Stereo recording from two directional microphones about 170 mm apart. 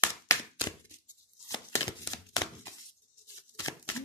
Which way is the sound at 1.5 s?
20° left (ahead or behind).